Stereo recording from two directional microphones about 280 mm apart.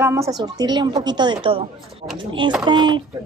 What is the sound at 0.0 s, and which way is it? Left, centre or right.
Speech, centre.